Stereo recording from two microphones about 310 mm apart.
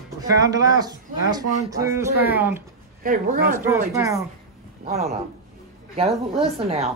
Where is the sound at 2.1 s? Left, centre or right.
Left.